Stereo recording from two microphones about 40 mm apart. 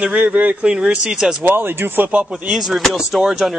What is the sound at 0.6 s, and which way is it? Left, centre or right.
Speech, right.